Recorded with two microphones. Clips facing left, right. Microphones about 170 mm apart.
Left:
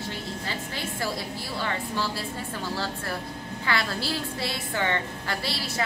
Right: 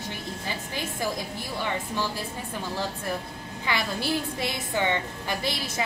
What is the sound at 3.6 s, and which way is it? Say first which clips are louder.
A woman's voice: even; 15° right (ahead or behind).